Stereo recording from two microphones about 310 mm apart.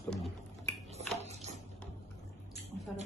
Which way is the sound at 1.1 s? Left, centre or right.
Right.